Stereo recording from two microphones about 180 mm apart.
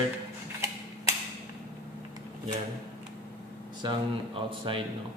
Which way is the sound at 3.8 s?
30° right (ahead or behind).